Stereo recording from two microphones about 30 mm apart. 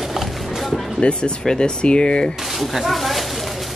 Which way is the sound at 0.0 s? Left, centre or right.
Centre.